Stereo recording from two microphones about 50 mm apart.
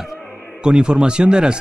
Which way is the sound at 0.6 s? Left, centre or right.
Centre.